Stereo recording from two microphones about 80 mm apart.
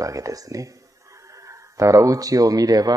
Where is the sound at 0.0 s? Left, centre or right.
Right.